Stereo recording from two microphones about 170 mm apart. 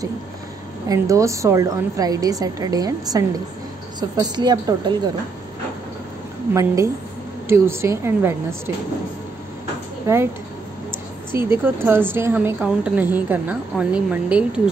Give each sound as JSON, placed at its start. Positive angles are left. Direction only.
{"t": 0.8, "sound": "a woman's voice", "side_deg": -20}
{"t": 6.5, "sound": "a woman's voice", "side_deg": -20}
{"t": 10.0, "sound": "a woman's voice", "side_deg": -15}
{"t": 10.9, "sound": "a sound", "side_deg": -15}
{"t": 12.1, "sound": "a woman's voice", "side_deg": -10}